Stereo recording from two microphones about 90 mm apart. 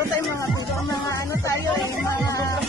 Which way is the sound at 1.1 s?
35° left (ahead or behind).